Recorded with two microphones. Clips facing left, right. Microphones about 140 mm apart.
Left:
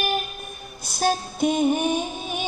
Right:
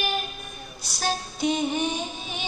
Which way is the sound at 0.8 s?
50° left (ahead or behind).